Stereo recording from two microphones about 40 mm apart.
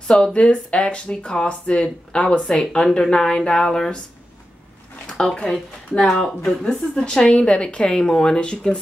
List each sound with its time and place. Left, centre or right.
0.1 s speech: centre
2.4 s speech: centre
5.0 s speech: centre
6.0 s speech: centre
7.2 s speech: left